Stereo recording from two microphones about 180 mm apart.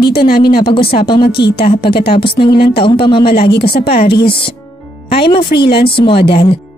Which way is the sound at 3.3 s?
65° left (ahead or behind).